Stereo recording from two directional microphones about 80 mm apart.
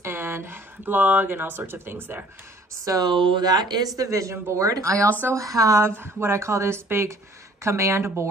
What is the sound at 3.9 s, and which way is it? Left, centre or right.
Speech, right.